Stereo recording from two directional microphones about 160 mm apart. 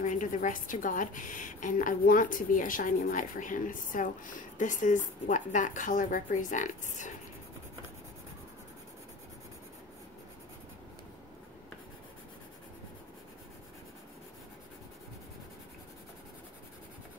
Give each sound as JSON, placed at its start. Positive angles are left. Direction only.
{"t": 0.0, "sound": "a woman's voice", "side_deg": 55}